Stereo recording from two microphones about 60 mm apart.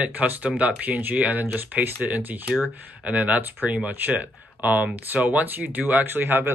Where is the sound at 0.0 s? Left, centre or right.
Right.